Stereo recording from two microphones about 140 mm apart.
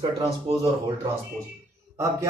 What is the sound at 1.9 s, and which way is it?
Speech, 20° right (ahead or behind).